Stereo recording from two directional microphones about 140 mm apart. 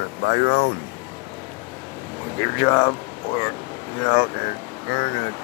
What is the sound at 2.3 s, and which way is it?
Speech, 30° left (ahead or behind).